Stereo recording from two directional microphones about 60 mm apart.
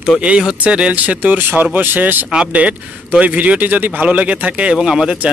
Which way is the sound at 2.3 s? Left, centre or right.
Centre.